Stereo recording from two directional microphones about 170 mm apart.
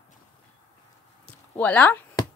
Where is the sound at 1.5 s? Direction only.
10° left (ahead or behind).